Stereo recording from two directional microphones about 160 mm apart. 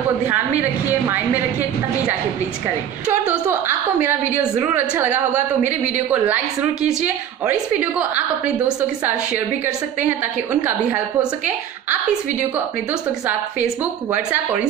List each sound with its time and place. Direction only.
0.3 s a woman's voice: 10° right (ahead or behind)
3.1 s a woman's voice: 15° right (ahead or behind)
5.3 s a man's voice: 45° right (ahead or behind)
8.0 s a woman's voice: 10° right (ahead or behind)